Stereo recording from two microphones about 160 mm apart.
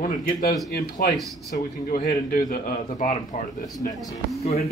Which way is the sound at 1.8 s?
55° left (ahead or behind).